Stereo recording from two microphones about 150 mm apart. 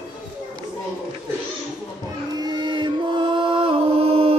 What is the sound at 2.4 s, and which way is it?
Music, 30° right (ahead or behind).